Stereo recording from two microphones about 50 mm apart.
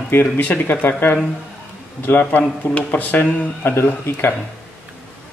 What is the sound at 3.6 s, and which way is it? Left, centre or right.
Speech, left.